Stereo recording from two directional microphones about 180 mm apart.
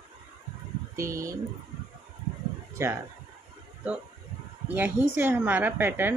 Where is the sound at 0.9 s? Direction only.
15° right (ahead or behind).